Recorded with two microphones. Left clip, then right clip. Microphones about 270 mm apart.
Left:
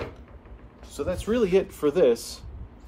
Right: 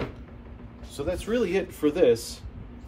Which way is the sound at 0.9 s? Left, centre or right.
Centre.